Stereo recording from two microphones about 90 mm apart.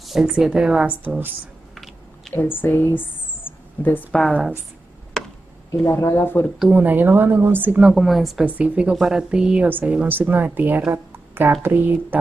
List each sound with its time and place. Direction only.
0.0 s a woman's voice: 5° right (ahead or behind)
2.3 s speech: 20° left (ahead or behind)
3.4 s a sound: 20° left (ahead or behind)
4.1 s a woman's voice: 5° left (ahead or behind)
5.2 s tick: 5° left (ahead or behind)
5.9 s speech: 30° left (ahead or behind)
6.7 s a woman's voice: 20° right (ahead or behind)
7.9 s a woman's voice: centre (ahead or behind)
8.5 s a woman's voice: 15° right (ahead or behind)
10.9 s a sound: 25° right (ahead or behind)
11.6 s a woman's voice: 20° right (ahead or behind)